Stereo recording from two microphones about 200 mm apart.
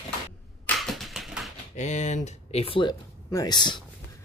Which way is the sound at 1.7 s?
35° left (ahead or behind).